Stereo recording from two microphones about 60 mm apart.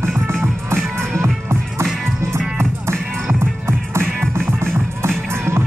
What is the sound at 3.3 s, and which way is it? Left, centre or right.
Music, right.